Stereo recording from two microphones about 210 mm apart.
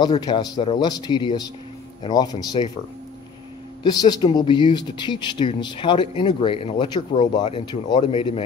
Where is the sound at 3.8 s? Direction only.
20° left (ahead or behind).